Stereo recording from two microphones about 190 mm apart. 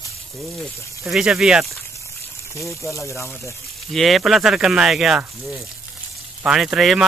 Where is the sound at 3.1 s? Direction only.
15° left (ahead or behind).